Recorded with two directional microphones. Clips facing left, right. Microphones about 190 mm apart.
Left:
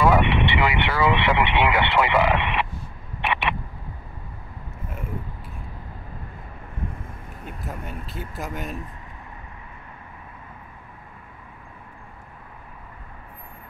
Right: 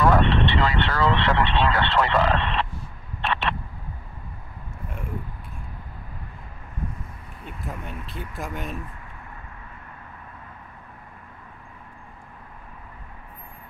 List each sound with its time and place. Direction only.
0.0 s speech: 10° left (ahead or behind)
3.2 s a sound: 15° left (ahead or behind)
7.4 s speech: centre (ahead or behind)